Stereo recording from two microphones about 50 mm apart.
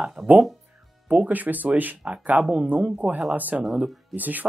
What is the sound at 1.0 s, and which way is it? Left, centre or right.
Speech, right.